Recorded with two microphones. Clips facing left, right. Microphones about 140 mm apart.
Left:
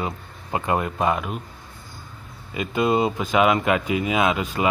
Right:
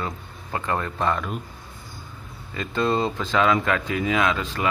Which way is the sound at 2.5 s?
15° left (ahead or behind).